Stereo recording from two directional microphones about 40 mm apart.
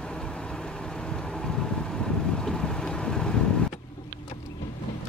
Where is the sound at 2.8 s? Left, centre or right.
Centre.